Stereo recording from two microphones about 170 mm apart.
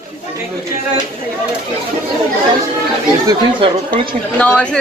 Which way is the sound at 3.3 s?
30° right (ahead or behind).